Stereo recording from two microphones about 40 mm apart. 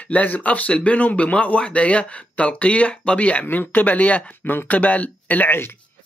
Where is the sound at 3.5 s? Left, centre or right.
Left.